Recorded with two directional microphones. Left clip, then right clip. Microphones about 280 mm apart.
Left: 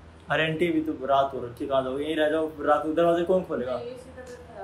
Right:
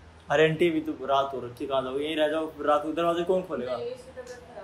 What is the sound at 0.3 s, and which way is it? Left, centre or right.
Speech, right.